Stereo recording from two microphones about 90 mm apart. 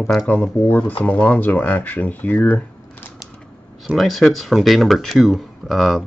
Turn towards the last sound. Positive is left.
turn(degrees=0)  # may be behind; listen again after turning